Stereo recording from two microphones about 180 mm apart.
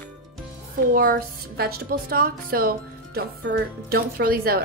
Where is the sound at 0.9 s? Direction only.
55° right (ahead or behind).